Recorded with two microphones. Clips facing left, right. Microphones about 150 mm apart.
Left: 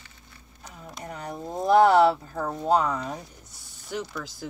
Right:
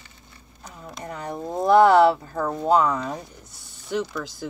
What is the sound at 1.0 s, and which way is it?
Speech, 50° right (ahead or behind).